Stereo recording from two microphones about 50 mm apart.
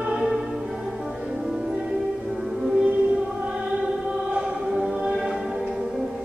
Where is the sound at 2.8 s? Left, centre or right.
Centre.